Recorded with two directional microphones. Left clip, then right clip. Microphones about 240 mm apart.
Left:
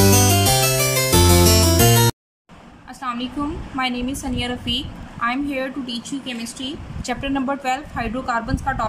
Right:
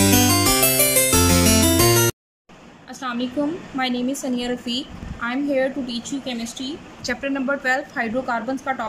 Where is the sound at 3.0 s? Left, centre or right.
Centre.